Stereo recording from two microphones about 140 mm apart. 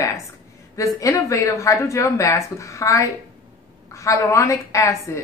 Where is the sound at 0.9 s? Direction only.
25° left (ahead or behind).